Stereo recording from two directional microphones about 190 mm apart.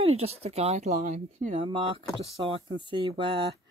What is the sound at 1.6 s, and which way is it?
Speech, 25° right (ahead or behind).